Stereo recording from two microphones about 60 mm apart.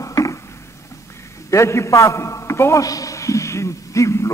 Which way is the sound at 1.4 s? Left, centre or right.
Left.